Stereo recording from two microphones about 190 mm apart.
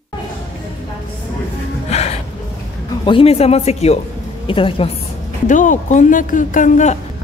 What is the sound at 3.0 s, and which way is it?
A woman's voice, 30° left (ahead or behind).